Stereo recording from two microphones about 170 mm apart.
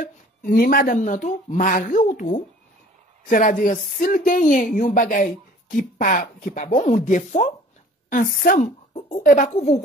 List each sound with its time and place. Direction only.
0.0 s speech: 55° left (ahead or behind)